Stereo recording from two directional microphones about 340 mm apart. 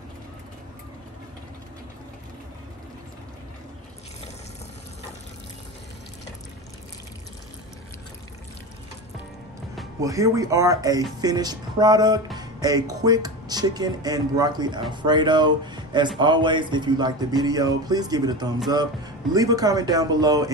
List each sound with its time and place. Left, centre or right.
9.8 s speech: centre